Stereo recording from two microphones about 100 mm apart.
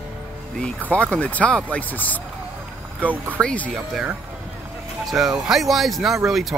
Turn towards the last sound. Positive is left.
turn(degrees=0)  # may be behind; listen again after turning